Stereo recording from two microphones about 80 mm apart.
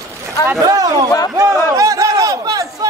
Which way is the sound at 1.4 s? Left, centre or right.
Right.